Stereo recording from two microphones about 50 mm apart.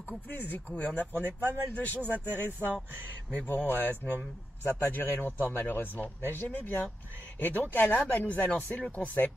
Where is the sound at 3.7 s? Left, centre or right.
Left.